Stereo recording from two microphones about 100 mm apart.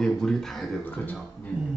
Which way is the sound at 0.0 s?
5° left (ahead or behind).